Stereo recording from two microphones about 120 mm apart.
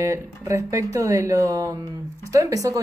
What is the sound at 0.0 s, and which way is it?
Speech, 25° right (ahead or behind).